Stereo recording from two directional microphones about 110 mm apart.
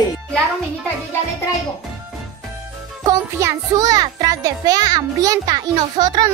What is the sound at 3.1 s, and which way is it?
A child's voice, 30° right (ahead or behind).